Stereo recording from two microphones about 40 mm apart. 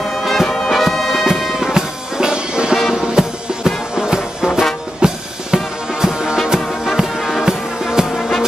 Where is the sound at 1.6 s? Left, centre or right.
Centre.